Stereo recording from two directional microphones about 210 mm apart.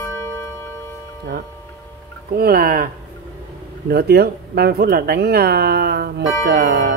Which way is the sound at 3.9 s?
50° right (ahead or behind).